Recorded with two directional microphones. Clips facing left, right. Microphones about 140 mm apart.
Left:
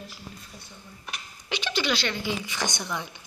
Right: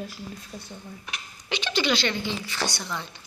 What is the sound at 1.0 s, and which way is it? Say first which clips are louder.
Speech: even; 5° left (ahead or behind).